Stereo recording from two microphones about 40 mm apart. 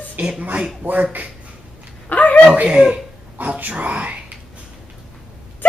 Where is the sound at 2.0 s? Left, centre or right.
Left.